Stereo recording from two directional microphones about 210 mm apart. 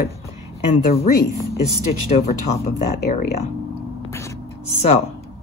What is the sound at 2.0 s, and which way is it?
Speech, 30° left (ahead or behind).